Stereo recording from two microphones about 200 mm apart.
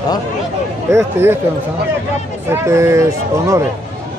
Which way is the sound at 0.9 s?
10° right (ahead or behind).